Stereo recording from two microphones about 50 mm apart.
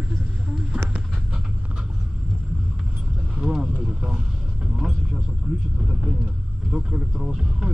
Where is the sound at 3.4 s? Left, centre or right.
Centre.